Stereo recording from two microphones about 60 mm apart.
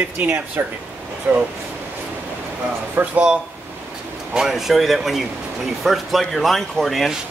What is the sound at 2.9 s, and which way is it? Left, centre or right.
Speech, right.